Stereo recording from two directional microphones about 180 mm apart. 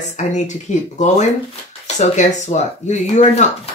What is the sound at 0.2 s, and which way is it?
Speech, 40° left (ahead or behind).